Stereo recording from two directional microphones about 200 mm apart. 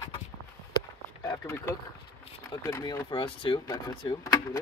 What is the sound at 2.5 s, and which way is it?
Speech, 20° left (ahead or behind).